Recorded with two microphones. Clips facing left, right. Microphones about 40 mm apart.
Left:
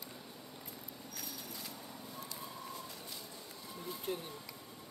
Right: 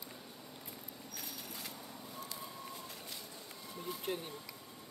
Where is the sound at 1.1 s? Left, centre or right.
Right.